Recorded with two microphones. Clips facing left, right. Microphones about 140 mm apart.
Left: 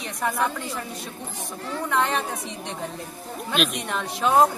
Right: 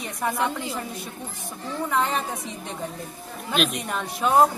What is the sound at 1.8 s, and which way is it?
Speech, 5° right (ahead or behind).